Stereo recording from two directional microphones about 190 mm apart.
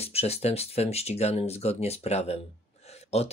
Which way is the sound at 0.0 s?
35° left (ahead or behind).